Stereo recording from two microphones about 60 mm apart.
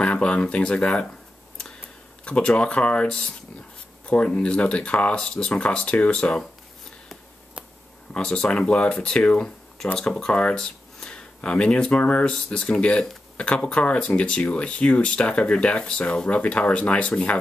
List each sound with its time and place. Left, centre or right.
0.0 s speech: centre
2.2 s speech: centre
5.2 s speech: centre
8.1 s speech: centre
12.4 s speech: centre